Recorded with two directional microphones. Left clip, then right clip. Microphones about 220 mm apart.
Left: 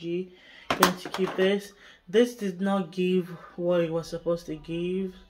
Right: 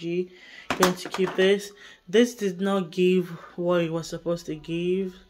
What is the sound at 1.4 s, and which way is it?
Speech, 50° right (ahead or behind).